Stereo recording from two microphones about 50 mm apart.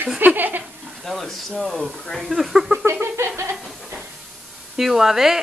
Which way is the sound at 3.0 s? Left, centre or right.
Right.